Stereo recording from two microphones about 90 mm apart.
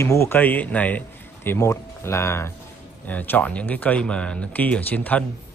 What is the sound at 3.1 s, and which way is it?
Speech, 20° left (ahead or behind).